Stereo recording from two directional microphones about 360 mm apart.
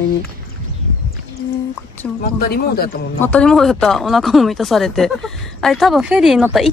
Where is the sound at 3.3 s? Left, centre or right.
Centre.